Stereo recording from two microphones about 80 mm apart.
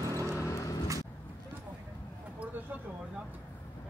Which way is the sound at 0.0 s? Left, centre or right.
Right.